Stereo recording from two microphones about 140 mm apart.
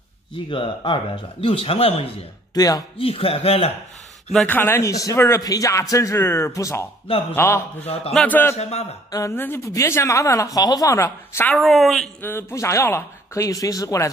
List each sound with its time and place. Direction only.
0.5 s a man's voice: 35° left (ahead or behind)
2.5 s speech: 25° left (ahead or behind)
3.0 s a man's voice: 40° left (ahead or behind)
4.5 s a man's voice: 15° left (ahead or behind)
7.8 s a man's voice: 45° left (ahead or behind)
8.1 s speech: 10° left (ahead or behind)
8.5 s a man's voice: 50° left (ahead or behind)
9.1 s a man's voice: 20° left (ahead or behind)
11.5 s speech: centre (ahead or behind)
12.2 s a man's voice: 15° left (ahead or behind)